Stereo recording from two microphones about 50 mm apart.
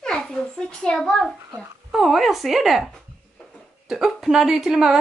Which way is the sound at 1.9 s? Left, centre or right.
Centre.